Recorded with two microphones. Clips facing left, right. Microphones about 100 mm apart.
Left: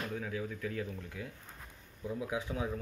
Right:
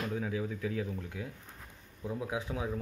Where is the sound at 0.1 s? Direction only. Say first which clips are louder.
Right 3 dB; 10° right (ahead or behind).